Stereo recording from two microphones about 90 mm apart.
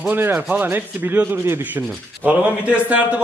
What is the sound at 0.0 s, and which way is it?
Sanding, 20° right (ahead or behind).